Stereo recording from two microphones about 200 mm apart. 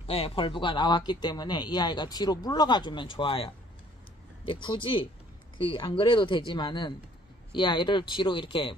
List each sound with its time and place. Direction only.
0.0 s speech: 30° left (ahead or behind)